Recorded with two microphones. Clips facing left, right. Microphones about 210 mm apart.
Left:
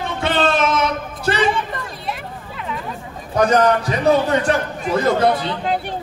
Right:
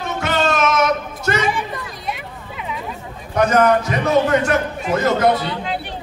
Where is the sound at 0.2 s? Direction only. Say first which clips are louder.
Left 1 dB; 30° left (ahead or behind).